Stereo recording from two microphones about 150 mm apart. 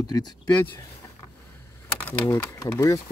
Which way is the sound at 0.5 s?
15° left (ahead or behind).